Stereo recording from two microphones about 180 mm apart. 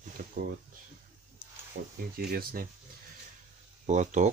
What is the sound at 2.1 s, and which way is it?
Speech, 55° right (ahead or behind).